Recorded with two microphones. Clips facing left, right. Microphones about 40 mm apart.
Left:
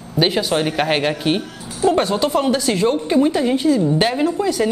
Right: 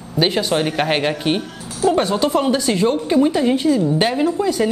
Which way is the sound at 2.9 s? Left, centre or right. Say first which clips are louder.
Even; centre.